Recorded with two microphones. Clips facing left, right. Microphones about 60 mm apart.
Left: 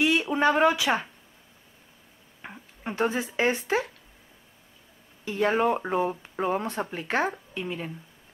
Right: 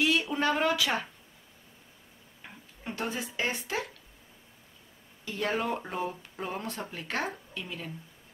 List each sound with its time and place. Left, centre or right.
0.0 s speech: left
2.4 s speech: left
5.2 s speech: left